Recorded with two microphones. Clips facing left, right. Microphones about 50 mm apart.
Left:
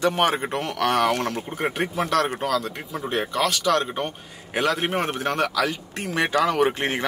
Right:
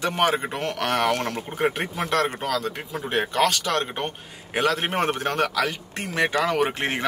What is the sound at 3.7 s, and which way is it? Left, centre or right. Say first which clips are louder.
Speech: left 3 dB; right.